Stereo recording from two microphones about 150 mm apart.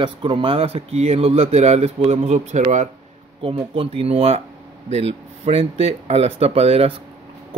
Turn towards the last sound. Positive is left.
turn(degrees=-40)  # may be behind; listen again after turning